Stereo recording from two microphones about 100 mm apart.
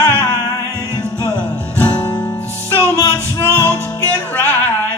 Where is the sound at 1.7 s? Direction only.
20° left (ahead or behind).